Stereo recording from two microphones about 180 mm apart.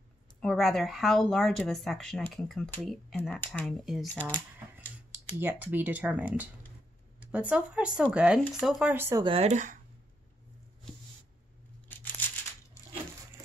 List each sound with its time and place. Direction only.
0.4 s speech: centre (ahead or behind)
9.2 s speech: 35° right (ahead or behind)